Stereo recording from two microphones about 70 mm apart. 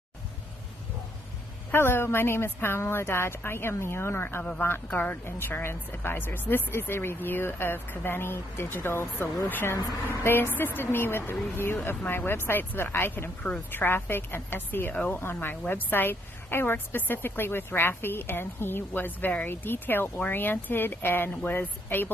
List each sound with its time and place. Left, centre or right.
1.7 s a woman's voice: left